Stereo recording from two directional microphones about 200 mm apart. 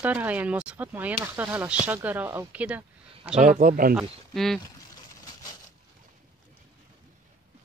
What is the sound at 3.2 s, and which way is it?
Speech, 30° right (ahead or behind).